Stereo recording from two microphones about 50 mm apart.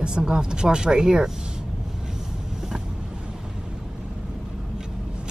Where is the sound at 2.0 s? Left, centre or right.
Centre.